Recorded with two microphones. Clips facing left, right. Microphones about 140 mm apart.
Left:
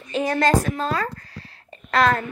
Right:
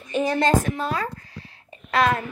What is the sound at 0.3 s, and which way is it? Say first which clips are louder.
Speech: left 1 dB; 25° right (ahead or behind).